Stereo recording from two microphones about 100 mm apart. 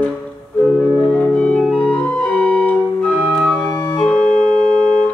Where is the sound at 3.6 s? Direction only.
20° left (ahead or behind).